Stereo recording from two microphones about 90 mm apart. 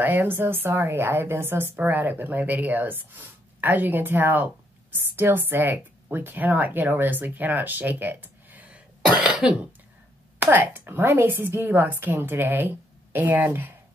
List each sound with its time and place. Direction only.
0.0 s a woman's voice: 20° right (ahead or behind)
9.2 s cough: 10° right (ahead or behind)
10.4 s a woman's voice: 25° right (ahead or behind)